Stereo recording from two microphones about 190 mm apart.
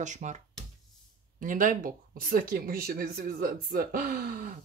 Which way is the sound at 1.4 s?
45° right (ahead or behind).